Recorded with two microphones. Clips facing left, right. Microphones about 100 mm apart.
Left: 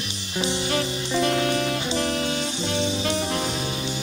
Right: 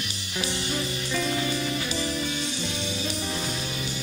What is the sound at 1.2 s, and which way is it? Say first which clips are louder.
Music: left 7 dB; 65° left (ahead or behind).